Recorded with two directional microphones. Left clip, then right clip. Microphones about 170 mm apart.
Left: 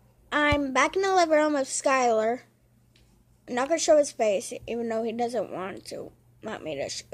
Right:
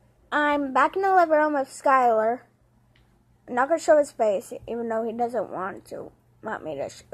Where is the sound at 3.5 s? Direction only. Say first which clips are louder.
Right 2 dB; 15° left (ahead or behind).